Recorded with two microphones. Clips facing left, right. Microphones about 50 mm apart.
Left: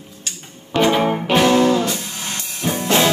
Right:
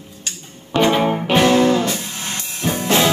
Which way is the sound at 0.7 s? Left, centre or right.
Centre.